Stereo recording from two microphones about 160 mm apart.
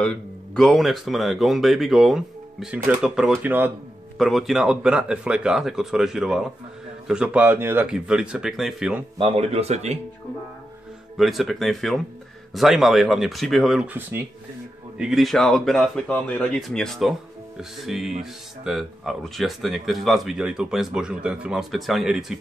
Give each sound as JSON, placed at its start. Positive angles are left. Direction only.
{"t": 0.0, "sound": "speech", "side_deg": 5}
{"t": 9.2, "sound": "speech", "side_deg": -40}
{"t": 11.1, "sound": "speech", "side_deg": 0}
{"t": 15.0, "sound": "speech", "side_deg": -5}